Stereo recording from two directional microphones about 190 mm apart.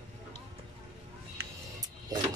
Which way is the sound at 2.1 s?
20° right (ahead or behind).